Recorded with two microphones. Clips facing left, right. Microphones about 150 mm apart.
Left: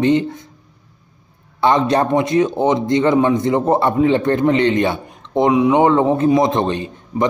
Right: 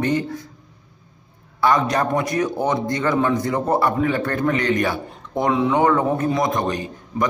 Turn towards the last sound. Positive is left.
turn(degrees=25)  # may be behind; listen again after turning